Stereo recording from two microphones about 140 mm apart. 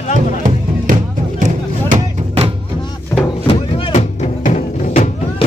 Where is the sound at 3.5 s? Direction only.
35° left (ahead or behind).